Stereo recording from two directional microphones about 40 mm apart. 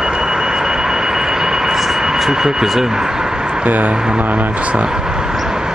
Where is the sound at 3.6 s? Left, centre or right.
Right.